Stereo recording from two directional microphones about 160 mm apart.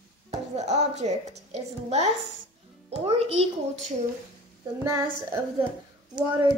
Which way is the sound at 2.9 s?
40° right (ahead or behind).